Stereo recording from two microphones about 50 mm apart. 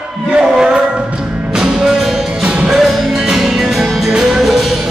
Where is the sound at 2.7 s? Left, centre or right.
Centre.